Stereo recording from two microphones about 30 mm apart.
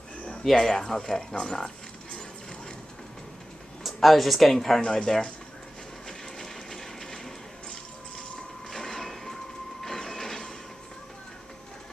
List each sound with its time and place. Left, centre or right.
0.6 s speech: centre
3.8 s speech: centre
6.0 s a sound: centre
8.6 s train: centre